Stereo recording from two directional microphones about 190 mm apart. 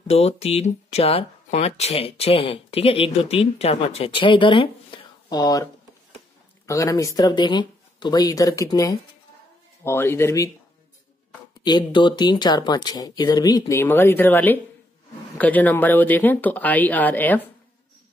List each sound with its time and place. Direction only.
0.1 s speech: 35° left (ahead or behind); by 10.5 s 15° left (ahead or behind)
11.6 s speech: 25° left (ahead or behind)